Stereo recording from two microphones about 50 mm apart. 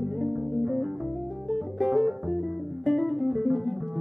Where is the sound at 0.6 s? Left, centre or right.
Centre.